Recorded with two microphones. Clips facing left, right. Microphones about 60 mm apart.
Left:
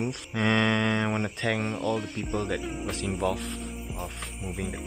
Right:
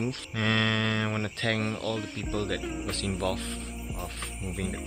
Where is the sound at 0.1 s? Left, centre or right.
Centre.